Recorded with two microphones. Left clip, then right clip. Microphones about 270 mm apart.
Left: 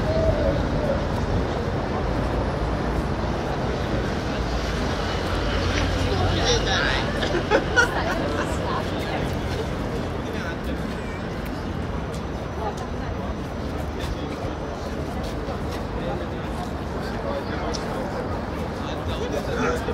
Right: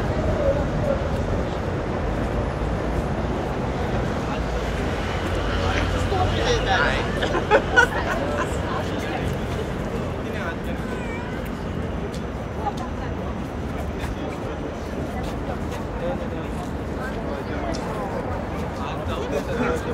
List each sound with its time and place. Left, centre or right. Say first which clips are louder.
6.4 s hubbub: right 1 dB; right